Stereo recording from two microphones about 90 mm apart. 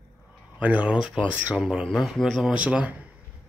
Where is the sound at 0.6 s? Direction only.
15° right (ahead or behind); by 2.5 s centre (ahead or behind).